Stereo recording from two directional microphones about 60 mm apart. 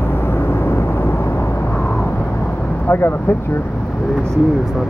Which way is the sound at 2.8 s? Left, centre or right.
Left.